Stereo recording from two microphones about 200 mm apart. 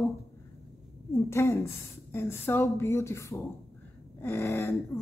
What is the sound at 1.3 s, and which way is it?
Speech, 15° left (ahead or behind).